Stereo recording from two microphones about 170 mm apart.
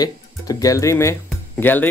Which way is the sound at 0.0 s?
20° left (ahead or behind).